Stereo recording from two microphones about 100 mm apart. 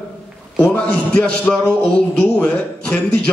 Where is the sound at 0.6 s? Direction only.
10° left (ahead or behind).